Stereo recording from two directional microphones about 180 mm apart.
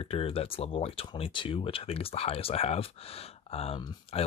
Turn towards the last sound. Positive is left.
turn(degrees=25)  # may be behind; listen again after turning